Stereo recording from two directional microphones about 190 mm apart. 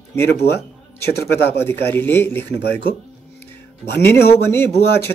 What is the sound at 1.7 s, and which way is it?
Speech, 10° left (ahead or behind).